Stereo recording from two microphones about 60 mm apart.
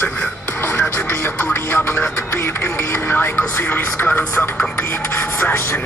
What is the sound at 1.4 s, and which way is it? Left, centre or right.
Music, left.